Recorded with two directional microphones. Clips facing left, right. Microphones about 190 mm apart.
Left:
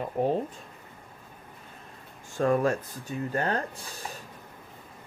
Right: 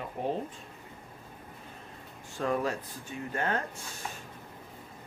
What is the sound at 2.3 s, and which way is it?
Speech, 50° left (ahead or behind).